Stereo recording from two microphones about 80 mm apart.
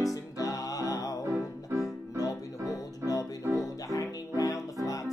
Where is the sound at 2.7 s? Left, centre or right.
Left.